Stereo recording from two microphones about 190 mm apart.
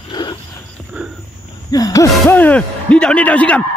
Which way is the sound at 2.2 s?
10° left (ahead or behind).